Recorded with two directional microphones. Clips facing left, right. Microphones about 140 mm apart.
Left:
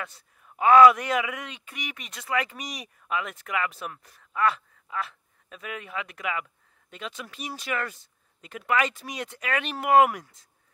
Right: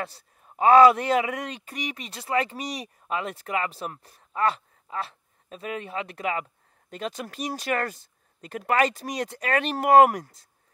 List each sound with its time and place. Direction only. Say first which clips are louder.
0.0 s speech: right 4 dB; 35° right (ahead or behind)